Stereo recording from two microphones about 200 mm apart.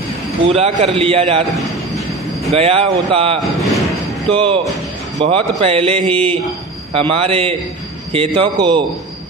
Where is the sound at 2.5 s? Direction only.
30° right (ahead or behind).